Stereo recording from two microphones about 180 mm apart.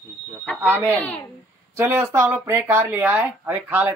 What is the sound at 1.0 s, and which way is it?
Speech, 10° left (ahead or behind).